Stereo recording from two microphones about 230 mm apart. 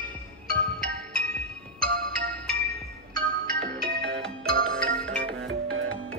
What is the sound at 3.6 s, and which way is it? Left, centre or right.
Music, right.